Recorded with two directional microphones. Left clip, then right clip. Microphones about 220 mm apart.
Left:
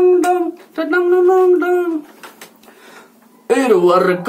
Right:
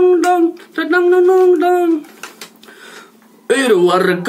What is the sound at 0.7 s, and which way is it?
Humming, 5° right (ahead or behind).